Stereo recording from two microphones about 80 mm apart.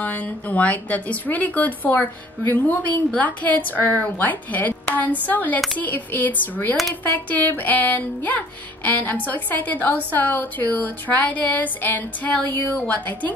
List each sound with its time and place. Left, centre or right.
0.0 s speech: centre